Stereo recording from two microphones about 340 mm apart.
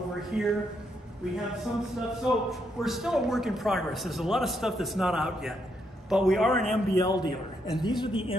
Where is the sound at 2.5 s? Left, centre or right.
Centre.